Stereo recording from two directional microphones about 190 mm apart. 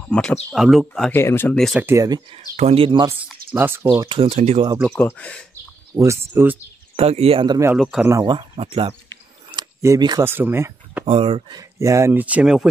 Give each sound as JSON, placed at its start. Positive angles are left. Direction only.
{"t": 0.1, "sound": "speech", "side_deg": 5}
{"t": 1.9, "sound": "speech", "side_deg": -20}
{"t": 2.5, "sound": "speech", "side_deg": -30}
{"t": 3.5, "sound": "speech", "side_deg": -10}
{"t": 4.3, "sound": "speech", "side_deg": -35}
{"t": 4.8, "sound": "speech", "side_deg": 5}
{"t": 5.5, "sound": "bird", "side_deg": -15}
{"t": 7.0, "sound": "speech", "side_deg": -30}
{"t": 7.7, "sound": "speech", "side_deg": 0}
{"t": 8.1, "sound": "speech", "side_deg": -20}
{"t": 9.5, "sound": "camera", "side_deg": -20}
{"t": 11.1, "sound": "speech", "side_deg": -30}